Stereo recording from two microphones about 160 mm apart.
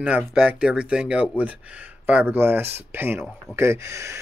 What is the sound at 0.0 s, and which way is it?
Speech, 10° right (ahead or behind).